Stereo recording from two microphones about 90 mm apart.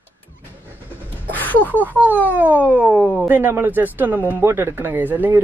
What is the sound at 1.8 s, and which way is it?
Speech, 20° right (ahead or behind).